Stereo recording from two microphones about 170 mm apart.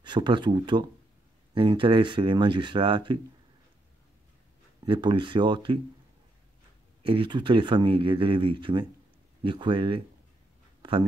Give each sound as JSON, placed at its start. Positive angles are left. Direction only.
{"t": 0.0, "sound": "speech", "side_deg": -25}
{"t": 4.8, "sound": "speech", "side_deg": -30}
{"t": 7.0, "sound": "speech", "side_deg": -30}
{"t": 10.8, "sound": "a sound", "side_deg": -30}